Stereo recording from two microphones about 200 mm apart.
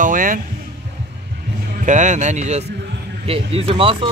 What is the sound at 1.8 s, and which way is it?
Speech, 35° right (ahead or behind).